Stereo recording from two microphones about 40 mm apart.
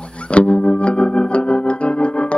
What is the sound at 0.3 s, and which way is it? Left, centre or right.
Music, left.